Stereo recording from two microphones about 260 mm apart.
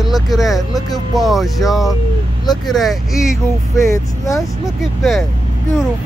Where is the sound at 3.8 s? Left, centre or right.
Centre.